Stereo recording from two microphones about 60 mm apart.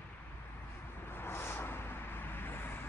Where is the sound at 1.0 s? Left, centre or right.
Left.